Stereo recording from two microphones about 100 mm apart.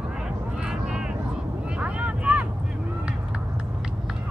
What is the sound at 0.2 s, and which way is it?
Vehicle, 5° right (ahead or behind).